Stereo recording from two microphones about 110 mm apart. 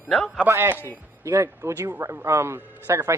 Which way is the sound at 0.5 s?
20° right (ahead or behind).